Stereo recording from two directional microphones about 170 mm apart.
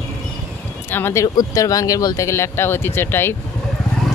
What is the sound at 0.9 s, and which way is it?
Speech, 15° left (ahead or behind).